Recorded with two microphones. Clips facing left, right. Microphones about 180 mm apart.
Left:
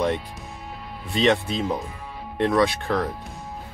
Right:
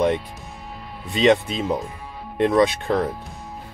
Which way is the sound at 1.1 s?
20° right (ahead or behind).